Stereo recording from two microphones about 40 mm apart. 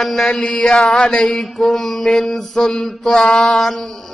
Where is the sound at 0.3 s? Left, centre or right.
Left.